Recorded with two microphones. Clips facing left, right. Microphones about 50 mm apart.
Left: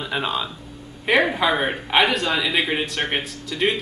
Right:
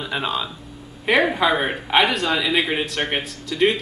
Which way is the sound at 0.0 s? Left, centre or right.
Centre.